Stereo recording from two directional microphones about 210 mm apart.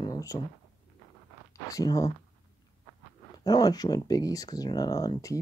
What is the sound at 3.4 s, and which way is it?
Speech, 20° left (ahead or behind).